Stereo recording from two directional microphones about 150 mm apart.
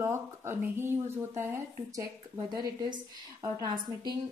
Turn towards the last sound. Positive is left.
turn(degrees=-30)  # may be behind; listen again after turning